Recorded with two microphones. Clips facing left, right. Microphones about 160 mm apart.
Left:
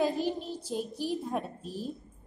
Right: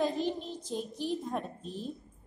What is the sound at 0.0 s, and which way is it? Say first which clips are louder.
A child's voice: left 2 dB; 5° left (ahead or behind).